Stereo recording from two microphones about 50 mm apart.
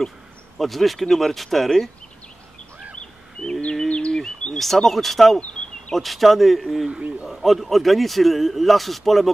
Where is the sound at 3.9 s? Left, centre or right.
Left.